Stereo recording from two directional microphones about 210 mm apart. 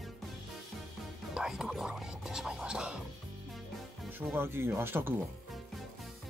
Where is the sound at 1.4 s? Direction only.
Centre (ahead or behind).